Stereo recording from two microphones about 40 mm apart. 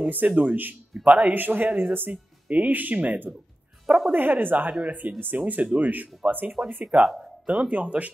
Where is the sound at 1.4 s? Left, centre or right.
Right.